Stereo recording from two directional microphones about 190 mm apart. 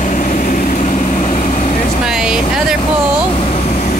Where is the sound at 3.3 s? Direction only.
35° left (ahead or behind).